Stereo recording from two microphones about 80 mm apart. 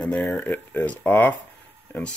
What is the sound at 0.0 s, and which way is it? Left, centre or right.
Speech, centre.